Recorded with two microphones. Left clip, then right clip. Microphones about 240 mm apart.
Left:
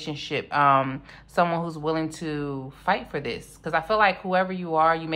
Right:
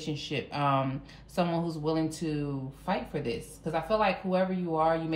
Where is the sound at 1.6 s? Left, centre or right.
Left.